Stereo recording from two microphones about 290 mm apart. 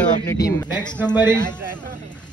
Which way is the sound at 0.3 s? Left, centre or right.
Centre.